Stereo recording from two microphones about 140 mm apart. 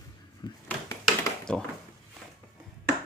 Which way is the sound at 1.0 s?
5° left (ahead or behind).